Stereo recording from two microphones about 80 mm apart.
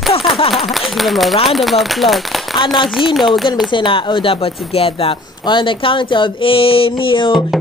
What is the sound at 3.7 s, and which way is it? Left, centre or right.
Speech, left.